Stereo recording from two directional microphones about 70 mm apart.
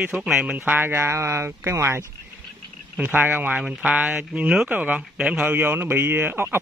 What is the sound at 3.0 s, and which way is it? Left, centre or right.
Speech, right.